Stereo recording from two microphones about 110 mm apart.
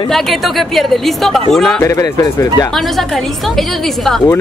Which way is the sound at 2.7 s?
Centre (ahead or behind).